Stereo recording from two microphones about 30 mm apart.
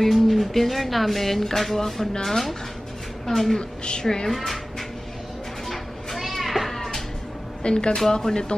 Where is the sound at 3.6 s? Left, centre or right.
Left.